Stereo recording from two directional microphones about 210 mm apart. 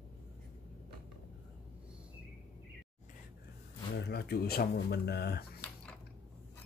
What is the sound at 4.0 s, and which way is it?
Speech, 50° left (ahead or behind).